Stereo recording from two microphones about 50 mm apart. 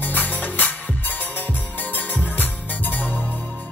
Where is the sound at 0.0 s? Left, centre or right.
Left.